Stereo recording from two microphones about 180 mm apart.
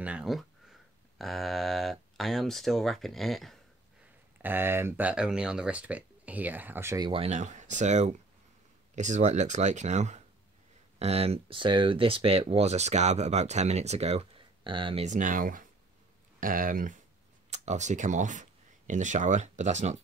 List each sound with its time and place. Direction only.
0.0 s speech: 5° right (ahead or behind)
4.4 s speech: 10° right (ahead or behind)
7.1 s speech: 35° right (ahead or behind)
15.0 s speech: 45° right (ahead or behind)